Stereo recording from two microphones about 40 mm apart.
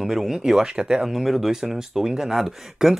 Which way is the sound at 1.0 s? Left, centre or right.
Centre.